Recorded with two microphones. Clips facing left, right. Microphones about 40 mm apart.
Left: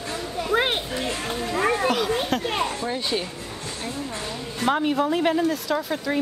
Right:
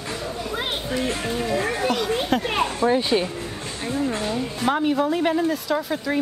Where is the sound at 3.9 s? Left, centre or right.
Right.